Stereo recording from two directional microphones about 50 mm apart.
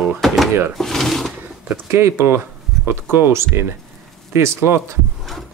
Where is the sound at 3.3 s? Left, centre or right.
Right.